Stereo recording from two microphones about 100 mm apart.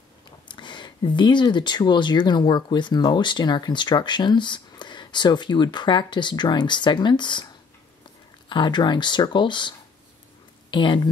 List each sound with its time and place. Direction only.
0.5 s speech: 50° left (ahead or behind)
8.5 s speech: 50° left (ahead or behind)